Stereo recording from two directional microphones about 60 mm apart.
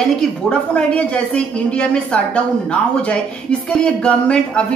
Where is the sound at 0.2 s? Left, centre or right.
Centre.